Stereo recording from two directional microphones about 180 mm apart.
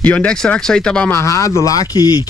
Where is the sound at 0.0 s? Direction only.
5° left (ahead or behind).